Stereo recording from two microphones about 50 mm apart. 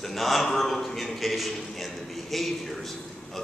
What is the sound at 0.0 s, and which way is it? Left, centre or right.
A man's voice, centre.